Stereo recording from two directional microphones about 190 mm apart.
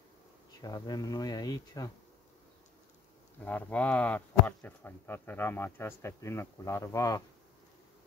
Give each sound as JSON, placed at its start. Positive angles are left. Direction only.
{"t": 0.6, "sound": "speech", "side_deg": 20}
{"t": 3.4, "sound": "speech", "side_deg": 10}